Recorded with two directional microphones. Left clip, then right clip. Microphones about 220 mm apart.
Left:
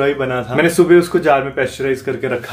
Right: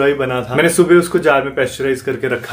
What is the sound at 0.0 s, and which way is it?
Speech, centre (ahead or behind).